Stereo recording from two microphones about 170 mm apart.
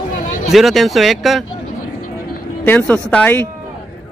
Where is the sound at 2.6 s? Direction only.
10° left (ahead or behind).